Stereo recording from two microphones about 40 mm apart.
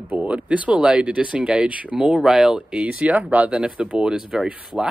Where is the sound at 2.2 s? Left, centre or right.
Centre.